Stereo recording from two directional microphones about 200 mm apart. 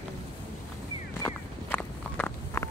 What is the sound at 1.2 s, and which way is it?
Walk, 5° left (ahead or behind).